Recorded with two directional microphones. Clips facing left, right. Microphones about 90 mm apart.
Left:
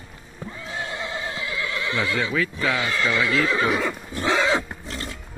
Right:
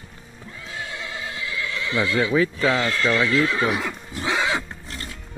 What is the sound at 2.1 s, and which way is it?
Speech, 20° right (ahead or behind).